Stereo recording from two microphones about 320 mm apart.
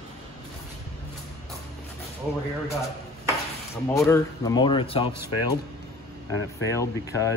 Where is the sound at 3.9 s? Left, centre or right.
Centre.